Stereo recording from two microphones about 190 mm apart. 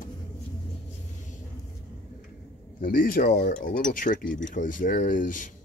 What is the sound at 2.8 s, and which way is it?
Speech, 50° left (ahead or behind).